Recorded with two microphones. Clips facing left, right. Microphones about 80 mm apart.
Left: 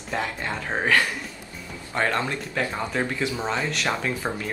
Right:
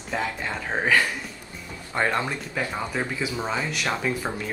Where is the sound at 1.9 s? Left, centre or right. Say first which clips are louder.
Even; centre.